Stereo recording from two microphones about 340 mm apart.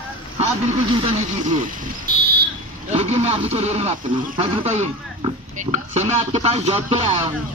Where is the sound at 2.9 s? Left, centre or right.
Centre.